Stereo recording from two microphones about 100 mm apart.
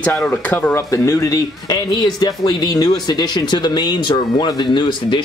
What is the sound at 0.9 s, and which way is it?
Speech, 30° left (ahead or behind).